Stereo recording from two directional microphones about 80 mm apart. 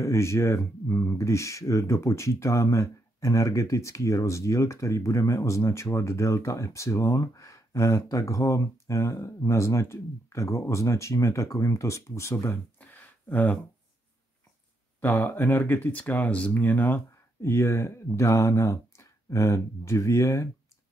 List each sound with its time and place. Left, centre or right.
0.0 s speech: left
12.7 s a sound: left
15.0 s speech: left